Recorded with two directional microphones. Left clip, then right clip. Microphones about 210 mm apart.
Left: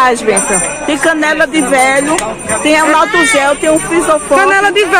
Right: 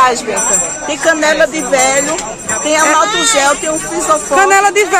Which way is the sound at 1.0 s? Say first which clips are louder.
Right 1 dB; 50° left (ahead or behind).